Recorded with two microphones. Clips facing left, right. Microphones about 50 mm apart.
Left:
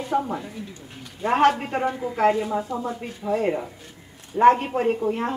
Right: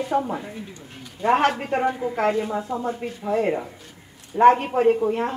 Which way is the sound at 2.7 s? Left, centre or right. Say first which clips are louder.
Right 1 dB; right.